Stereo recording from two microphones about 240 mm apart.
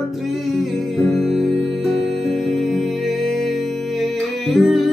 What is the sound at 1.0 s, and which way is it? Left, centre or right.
Music, centre.